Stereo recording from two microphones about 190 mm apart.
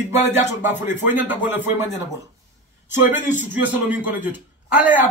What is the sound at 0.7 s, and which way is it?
Speech, 10° right (ahead or behind).